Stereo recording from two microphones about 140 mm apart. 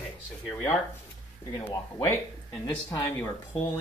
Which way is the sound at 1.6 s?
15° left (ahead or behind).